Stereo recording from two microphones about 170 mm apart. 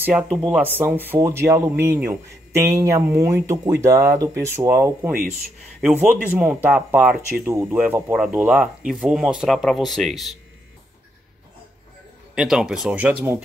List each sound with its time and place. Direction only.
0.0 s speech: 10° right (ahead or behind)
12.4 s speech: 5° right (ahead or behind)